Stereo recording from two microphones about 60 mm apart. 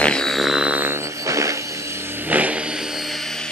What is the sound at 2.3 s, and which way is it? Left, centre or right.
Vehicle, right.